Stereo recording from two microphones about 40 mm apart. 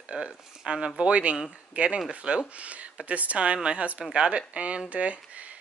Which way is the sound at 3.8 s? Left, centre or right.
Right.